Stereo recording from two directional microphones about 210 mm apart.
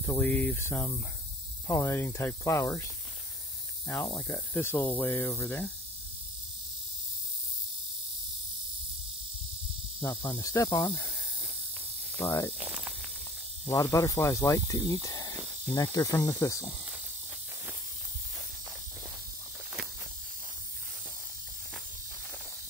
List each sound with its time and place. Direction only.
0.0 s speech: 5° left (ahead or behind)
3.8 s speech: 10° left (ahead or behind)
9.9 s speech: 15° left (ahead or behind)
12.2 s speech: 15° left (ahead or behind)
12.5 s speech: 10° right (ahead or behind)
13.7 s speech: 15° left (ahead or behind)